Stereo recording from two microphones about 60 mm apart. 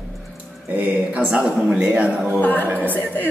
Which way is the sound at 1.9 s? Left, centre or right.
Right.